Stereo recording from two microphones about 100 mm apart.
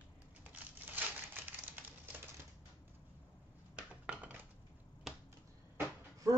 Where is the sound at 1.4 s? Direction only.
20° right (ahead or behind).